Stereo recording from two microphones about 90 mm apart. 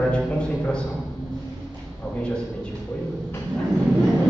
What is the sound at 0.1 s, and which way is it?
Speech, 10° left (ahead or behind).